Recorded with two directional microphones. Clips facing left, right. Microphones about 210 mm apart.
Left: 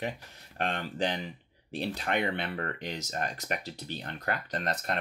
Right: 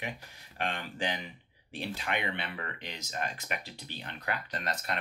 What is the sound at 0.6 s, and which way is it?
Speech, 40° left (ahead or behind).